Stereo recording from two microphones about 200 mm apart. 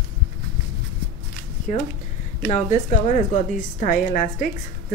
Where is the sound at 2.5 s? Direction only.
35° left (ahead or behind).